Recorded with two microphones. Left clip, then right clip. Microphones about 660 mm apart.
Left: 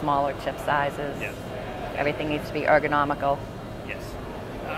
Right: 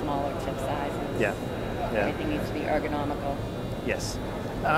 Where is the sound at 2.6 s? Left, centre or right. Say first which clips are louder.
Left 9 dB; left.